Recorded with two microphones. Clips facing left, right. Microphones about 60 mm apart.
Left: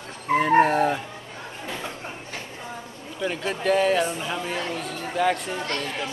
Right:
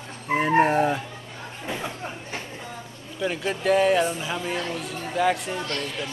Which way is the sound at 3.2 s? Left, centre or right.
Centre.